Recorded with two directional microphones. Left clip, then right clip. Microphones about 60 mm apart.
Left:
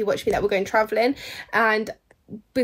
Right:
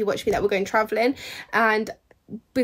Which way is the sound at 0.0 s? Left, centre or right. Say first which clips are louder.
Left 1 dB; right.